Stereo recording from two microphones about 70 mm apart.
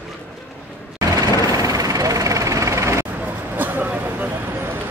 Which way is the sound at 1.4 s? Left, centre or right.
Right.